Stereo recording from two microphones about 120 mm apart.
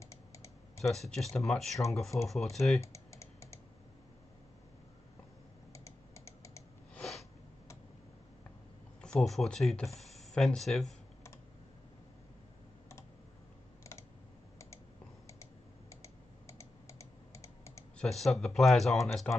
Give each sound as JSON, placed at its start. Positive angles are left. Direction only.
{"t": 0.0, "sound": "typing", "side_deg": 25}
{"t": 0.8, "sound": "speech", "side_deg": 0}
{"t": 2.1, "sound": "speech", "side_deg": 20}
{"t": 2.5, "sound": "speech", "side_deg": 0}
{"t": 2.8, "sound": "computer keyboard", "side_deg": 25}
{"t": 5.7, "sound": "typing", "side_deg": 25}
{"t": 7.0, "sound": "a sound", "side_deg": 0}
{"t": 9.0, "sound": "speech", "side_deg": 5}
{"t": 15.9, "sound": "computer keyboard", "side_deg": 25}
{"t": 17.9, "sound": "speech", "side_deg": 0}